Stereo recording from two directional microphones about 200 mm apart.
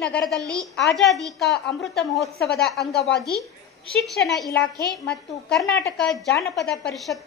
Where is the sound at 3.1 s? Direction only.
50° left (ahead or behind).